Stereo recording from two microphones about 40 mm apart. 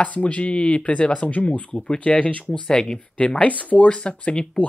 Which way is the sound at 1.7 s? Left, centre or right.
Left.